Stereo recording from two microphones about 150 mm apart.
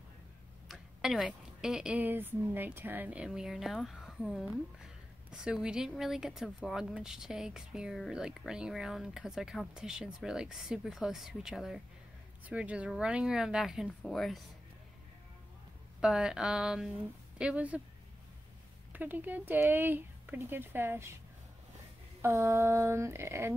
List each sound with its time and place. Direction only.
0.7 s a woman's voice: centre (ahead or behind)
16.0 s a woman's voice: 5° right (ahead or behind)
18.9 s speech: 10° right (ahead or behind)
22.2 s speech: 20° right (ahead or behind)